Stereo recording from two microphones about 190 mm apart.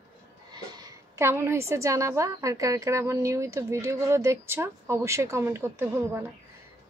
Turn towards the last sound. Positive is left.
turn(degrees=-10)  # may be behind; listen again after turning